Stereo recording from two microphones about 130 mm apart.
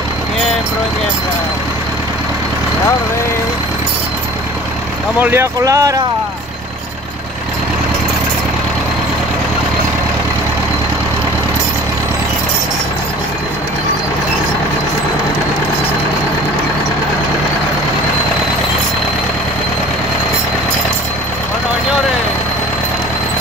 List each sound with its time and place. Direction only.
5.2 s speech: 20° right (ahead or behind)